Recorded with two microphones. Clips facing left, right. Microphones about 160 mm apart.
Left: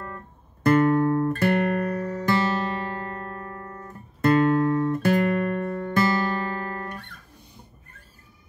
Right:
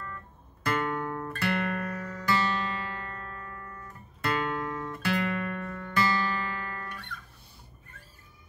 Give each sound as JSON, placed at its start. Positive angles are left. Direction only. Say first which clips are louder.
{"t": 0.7, "sound": "guitar", "louder": "left 12 dB", "side_deg": 40}